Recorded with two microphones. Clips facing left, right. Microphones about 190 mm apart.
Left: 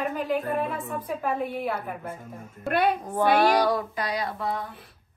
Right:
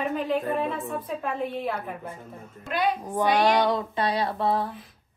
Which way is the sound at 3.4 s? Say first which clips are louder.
Even; 25° right (ahead or behind).